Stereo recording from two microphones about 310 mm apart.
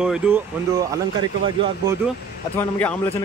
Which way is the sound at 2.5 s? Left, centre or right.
Centre.